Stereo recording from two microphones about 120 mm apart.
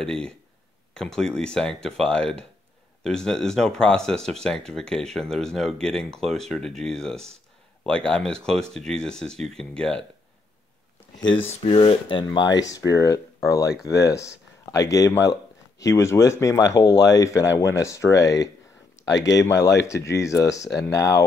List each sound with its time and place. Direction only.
0.0 s speech: 5° left (ahead or behind)
11.6 s speech: 50° left (ahead or behind)
12.4 s speech: 35° left (ahead or behind)